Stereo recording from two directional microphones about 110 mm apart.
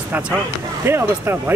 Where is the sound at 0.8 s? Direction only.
20° right (ahead or behind).